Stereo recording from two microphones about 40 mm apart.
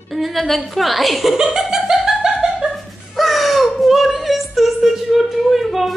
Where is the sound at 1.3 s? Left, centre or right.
Centre.